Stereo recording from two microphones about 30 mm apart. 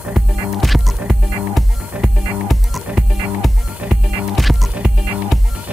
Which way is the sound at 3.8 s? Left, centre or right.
Right.